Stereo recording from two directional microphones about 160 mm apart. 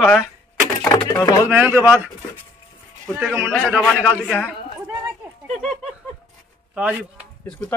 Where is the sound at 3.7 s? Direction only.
5° right (ahead or behind).